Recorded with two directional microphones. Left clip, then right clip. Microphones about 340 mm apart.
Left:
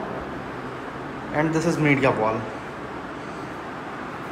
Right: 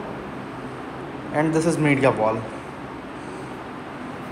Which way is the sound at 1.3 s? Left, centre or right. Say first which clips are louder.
Right 2 dB; centre.